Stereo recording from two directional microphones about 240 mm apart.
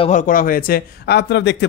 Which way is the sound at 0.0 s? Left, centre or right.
Left.